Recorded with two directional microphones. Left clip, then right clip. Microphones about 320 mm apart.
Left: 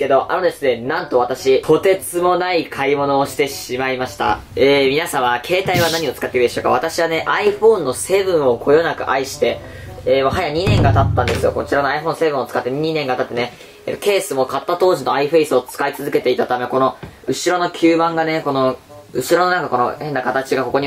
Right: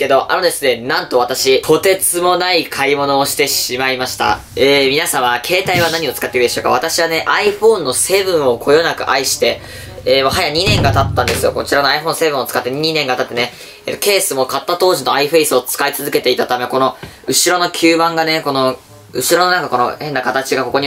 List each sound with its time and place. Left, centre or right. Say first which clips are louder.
0.3 s speech: right 3 dB; centre
1.1 s speech: right 1 dB; centre
1.4 s speech: right 2 dB; centre
7.6 s speech: even; centre
8.1 s speech: right 2 dB; centre
14.3 s speech: right 2 dB; centre
15.0 s speech: right 3 dB; centre